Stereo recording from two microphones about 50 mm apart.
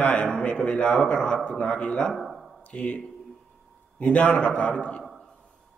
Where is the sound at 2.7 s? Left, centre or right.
Left.